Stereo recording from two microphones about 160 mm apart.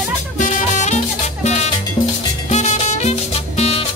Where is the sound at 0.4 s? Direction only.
50° left (ahead or behind).